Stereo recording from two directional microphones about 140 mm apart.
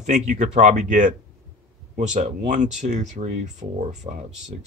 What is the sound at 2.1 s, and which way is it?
Speech, 55° right (ahead or behind).